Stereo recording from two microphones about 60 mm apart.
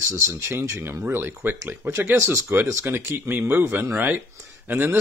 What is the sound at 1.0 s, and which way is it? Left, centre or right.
Speech, right.